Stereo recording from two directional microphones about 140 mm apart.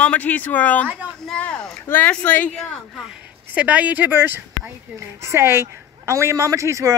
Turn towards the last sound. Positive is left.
turn(degrees=-20)  # may be behind; listen again after turning